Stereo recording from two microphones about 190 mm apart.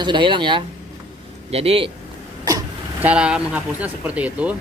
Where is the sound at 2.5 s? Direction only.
20° right (ahead or behind).